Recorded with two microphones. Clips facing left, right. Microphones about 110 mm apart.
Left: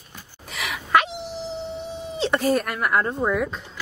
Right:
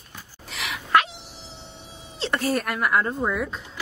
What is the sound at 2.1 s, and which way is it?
Speech, centre (ahead or behind).